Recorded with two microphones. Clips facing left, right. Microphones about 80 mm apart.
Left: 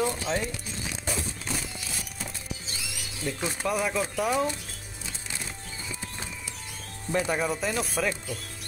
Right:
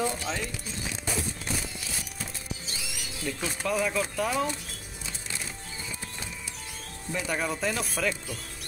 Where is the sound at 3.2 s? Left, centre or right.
Centre.